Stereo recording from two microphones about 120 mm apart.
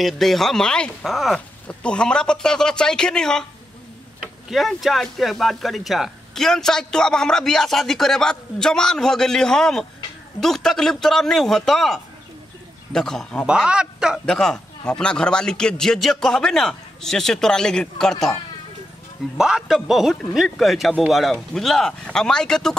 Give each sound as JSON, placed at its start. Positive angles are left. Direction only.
{"t": 0.0, "sound": "a man's voice", "side_deg": 0}
{"t": 13.5, "sound": "speech", "side_deg": -10}
{"t": 14.2, "sound": "speech", "side_deg": 5}
{"t": 19.3, "sound": "speech", "side_deg": -5}